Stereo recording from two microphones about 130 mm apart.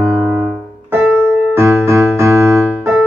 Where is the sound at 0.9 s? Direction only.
15° right (ahead or behind).